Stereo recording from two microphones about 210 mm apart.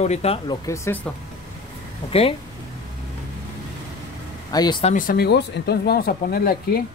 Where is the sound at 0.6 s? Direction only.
15° left (ahead or behind).